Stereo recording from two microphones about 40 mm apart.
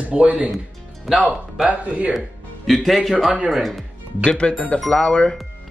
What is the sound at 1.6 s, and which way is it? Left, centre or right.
Speech, right.